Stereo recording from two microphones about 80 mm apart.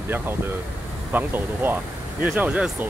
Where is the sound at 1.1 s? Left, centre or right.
Right.